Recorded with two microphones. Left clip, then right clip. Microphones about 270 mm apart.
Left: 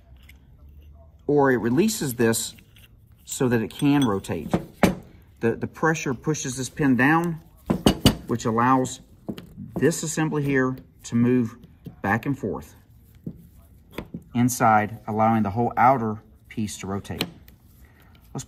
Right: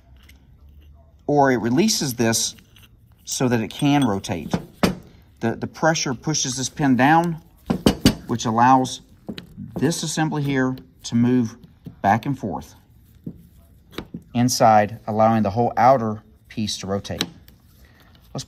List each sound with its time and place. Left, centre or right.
1.2 s speech: right
2.5 s a sound: centre
3.3 s speech: right
7.7 s a sound: centre
8.3 s speech: centre
13.9 s speech: centre
18.3 s speech: centre